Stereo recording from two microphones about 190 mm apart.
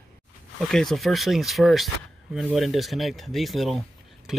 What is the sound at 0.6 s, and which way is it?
Speech, centre (ahead or behind).